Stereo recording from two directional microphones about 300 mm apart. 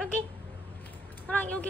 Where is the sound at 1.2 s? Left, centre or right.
Centre.